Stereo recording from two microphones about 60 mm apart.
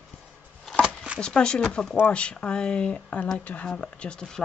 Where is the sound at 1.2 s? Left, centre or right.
Centre.